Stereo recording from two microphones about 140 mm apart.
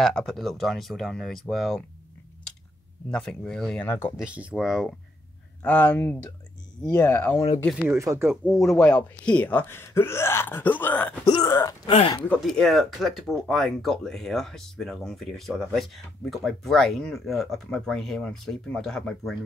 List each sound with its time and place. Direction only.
0.0 s speech: 5° left (ahead or behind)
3.1 s speech: 5° left (ahead or behind)
4.2 s speech: 10° right (ahead or behind)
5.6 s speech: 10° left (ahead or behind)
7.2 s speech: 35° left (ahead or behind)
7.9 s speech: 20° right (ahead or behind)
8.5 s speech: centre (ahead or behind)
11.4 s speech: 25° left (ahead or behind)
11.9 s speech: 45° left (ahead or behind)
12.4 s speech: centre (ahead or behind)